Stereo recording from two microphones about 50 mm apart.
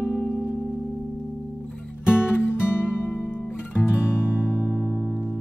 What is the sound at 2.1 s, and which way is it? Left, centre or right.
Music, left.